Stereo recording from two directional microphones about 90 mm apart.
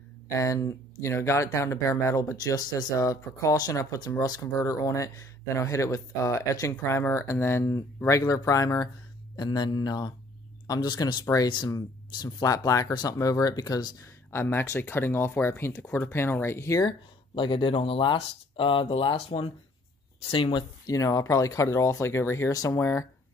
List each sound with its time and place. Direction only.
0.3 s speech: 35° left (ahead or behind)
8.2 s speech: 40° left (ahead or behind)
9.4 s speech: 55° left (ahead or behind)
12.2 s speech: 45° left (ahead or behind)
14.0 s speech: 30° left (ahead or behind)
17.4 s speech: 65° left (ahead or behind)
20.9 s speech: 40° left (ahead or behind)
22.5 s speech: 40° left (ahead or behind)